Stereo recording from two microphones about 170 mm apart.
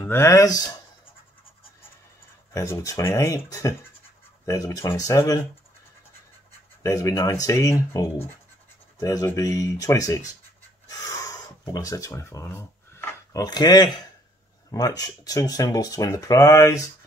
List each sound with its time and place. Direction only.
0.0 s speech: 15° left (ahead or behind)
2.5 s speech: 20° left (ahead or behind)
6.8 s speech: 20° left (ahead or behind)
10.9 s a sound: 20° left (ahead or behind)
14.7 s speech: 20° left (ahead or behind)